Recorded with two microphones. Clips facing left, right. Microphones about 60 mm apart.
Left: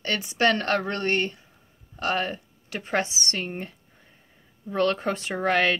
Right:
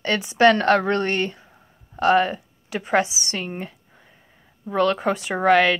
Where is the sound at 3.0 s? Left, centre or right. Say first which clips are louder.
Left 1 dB; left.